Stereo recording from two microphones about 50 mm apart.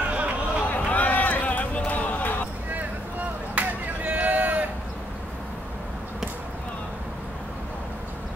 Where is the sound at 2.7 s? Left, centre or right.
Right.